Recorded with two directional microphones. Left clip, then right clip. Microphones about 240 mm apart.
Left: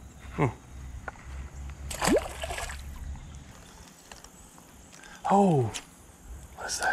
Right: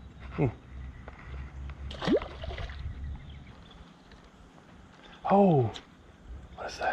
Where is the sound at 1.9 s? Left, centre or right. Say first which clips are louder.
Left 3 dB; left.